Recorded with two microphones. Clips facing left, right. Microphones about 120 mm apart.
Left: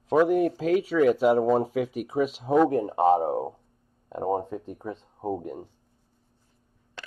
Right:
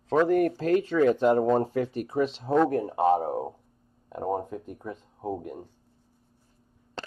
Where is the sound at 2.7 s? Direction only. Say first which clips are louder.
Left 2 dB; 20° left (ahead or behind).